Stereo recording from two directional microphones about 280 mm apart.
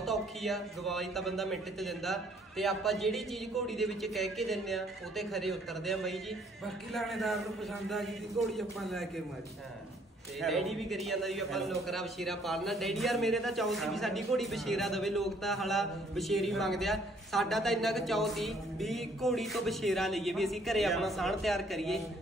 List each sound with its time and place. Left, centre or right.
0.0 s a man's voice: centre
10.4 s a man's voice: centre